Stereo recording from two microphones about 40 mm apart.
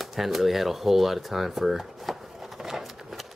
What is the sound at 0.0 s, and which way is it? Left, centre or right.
Speech, centre.